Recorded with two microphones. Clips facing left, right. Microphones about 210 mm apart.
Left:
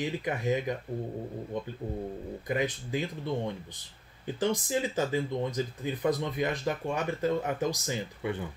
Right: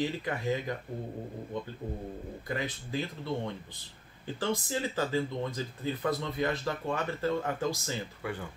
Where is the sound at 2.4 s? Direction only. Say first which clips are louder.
Left 5 dB; 15° left (ahead or behind).